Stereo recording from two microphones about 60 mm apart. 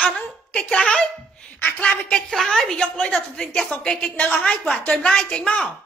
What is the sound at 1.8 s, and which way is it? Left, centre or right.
Speech, centre.